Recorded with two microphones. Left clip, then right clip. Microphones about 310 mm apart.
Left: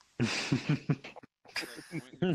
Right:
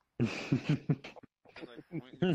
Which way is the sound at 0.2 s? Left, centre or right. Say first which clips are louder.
Left 3 dB; left.